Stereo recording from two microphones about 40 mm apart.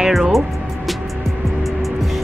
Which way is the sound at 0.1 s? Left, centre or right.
Centre.